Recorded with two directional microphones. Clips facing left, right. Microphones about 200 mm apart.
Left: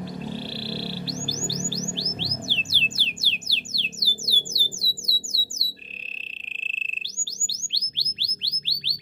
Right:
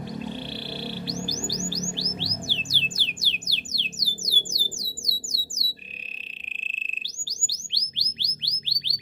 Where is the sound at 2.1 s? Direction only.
10° right (ahead or behind).